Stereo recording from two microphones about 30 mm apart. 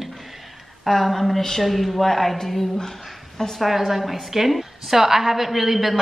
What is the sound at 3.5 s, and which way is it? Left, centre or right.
A woman's voice, centre.